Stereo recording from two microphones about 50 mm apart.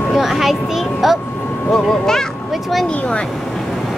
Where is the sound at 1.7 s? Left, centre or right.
Centre.